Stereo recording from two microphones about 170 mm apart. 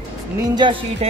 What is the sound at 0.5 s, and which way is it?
Speech, 30° right (ahead or behind).